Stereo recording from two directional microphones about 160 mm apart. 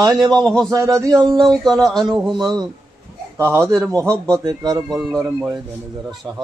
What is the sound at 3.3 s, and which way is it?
A man's voice, 20° right (ahead or behind).